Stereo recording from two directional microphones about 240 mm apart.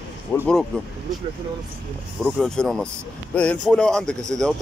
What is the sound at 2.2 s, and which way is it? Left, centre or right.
Speech, centre.